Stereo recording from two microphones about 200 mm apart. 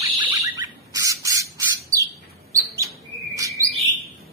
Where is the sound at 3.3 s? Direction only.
15° right (ahead or behind).